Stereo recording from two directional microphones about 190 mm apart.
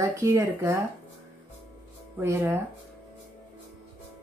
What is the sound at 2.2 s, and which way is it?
Speech, 15° right (ahead or behind).